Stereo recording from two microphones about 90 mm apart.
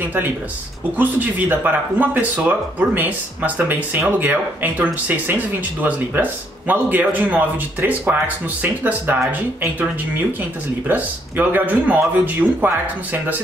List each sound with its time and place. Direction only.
0.9 s speech: 20° right (ahead or behind)
10.9 s speech: 20° right (ahead or behind)